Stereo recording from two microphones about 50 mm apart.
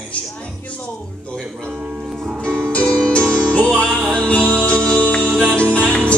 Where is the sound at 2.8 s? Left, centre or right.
Centre.